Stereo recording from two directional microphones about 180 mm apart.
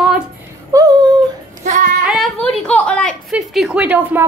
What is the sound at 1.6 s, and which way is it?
Child singing, 45° right (ahead or behind).